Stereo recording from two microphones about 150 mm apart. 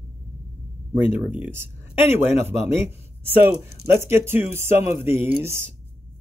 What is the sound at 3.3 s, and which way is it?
Speech, 15° right (ahead or behind).